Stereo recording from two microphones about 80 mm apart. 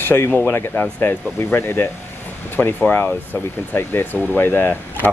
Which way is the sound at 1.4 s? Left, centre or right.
Left.